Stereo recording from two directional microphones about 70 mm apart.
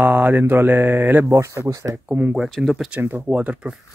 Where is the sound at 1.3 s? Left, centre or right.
Right.